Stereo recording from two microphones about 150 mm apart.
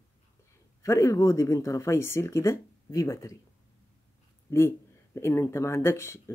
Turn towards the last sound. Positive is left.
turn(degrees=15)  # may be behind; listen again after turning